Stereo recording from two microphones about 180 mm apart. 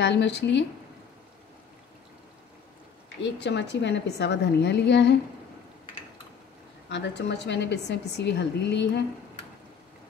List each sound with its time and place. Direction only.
0.0 s a woman's voice: 75° left (ahead or behind)
3.2 s a woman's voice: 75° left (ahead or behind)
6.9 s a woman's voice: 70° left (ahead or behind)